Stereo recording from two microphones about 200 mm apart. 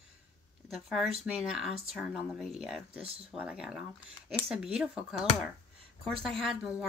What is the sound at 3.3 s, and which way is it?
Speech, 5° right (ahead or behind).